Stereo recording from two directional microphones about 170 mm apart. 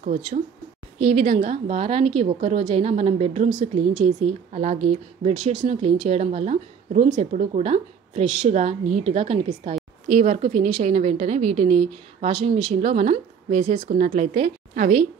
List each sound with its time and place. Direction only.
0.0 s a woman's voice: 45° right (ahead or behind)